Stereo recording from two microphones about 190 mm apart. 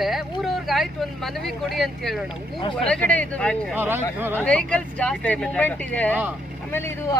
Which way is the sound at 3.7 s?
10° right (ahead or behind).